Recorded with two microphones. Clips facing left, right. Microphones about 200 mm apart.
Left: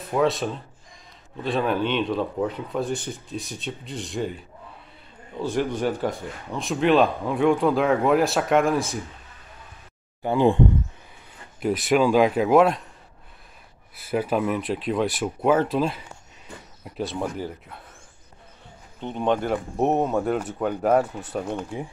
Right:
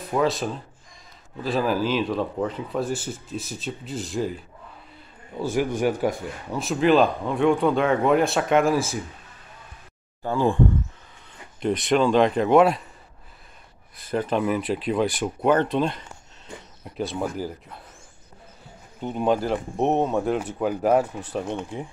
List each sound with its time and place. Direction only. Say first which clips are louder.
0.0 s speech: left 1 dB; centre (ahead or behind)
5.4 s speech: right 1 dB; 10° right (ahead or behind)
6.4 s speech: right 1 dB; centre (ahead or behind)
10.2 s speech: left 3 dB; 20° left (ahead or behind)
11.6 s speech: even; 5° left (ahead or behind)
13.9 s speech: left 1 dB; 10° left (ahead or behind)
18.9 s speech: right 1 dB; 5° right (ahead or behind)